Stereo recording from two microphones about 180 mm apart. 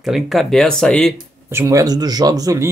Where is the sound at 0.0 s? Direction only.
Centre (ahead or behind).